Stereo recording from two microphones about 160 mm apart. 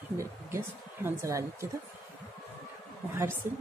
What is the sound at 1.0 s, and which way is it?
Speech, 20° right (ahead or behind).